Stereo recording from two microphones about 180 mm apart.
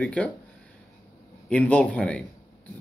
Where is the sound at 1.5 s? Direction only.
5° left (ahead or behind).